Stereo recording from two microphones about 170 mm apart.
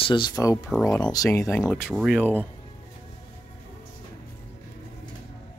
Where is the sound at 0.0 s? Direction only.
30° left (ahead or behind).